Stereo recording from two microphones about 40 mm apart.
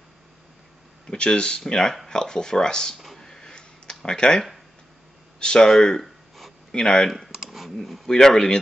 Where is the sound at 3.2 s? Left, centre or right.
Centre.